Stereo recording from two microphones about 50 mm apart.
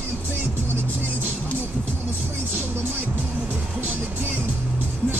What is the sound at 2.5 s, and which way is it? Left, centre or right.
Music, right.